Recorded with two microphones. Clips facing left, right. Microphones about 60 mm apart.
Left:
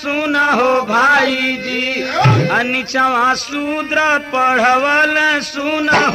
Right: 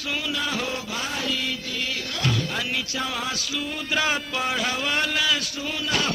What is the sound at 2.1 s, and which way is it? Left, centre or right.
Speech, left.